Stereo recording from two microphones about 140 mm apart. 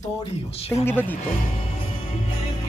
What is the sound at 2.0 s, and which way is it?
Music, 45° left (ahead or behind).